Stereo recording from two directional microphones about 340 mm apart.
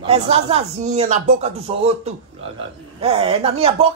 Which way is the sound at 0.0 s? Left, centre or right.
Centre.